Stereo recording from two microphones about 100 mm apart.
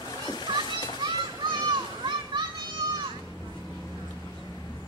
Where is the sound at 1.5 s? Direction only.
50° right (ahead or behind).